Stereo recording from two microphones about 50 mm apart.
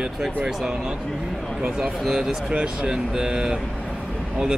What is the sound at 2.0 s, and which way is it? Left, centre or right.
Speech, centre.